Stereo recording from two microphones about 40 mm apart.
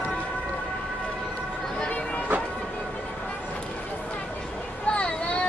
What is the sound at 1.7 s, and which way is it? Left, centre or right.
Music, left.